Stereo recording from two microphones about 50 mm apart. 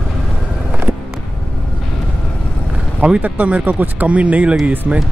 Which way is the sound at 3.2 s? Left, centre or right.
Right.